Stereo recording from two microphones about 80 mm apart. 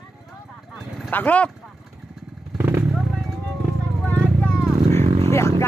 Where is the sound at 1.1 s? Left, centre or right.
Centre.